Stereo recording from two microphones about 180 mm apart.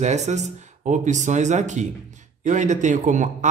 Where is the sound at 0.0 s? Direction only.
40° right (ahead or behind).